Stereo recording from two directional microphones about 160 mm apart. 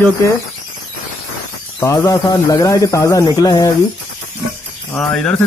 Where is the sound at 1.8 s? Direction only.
15° left (ahead or behind).